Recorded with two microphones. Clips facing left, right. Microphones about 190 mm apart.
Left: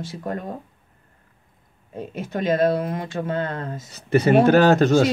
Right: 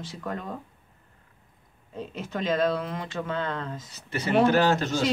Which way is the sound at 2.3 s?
50° left (ahead or behind).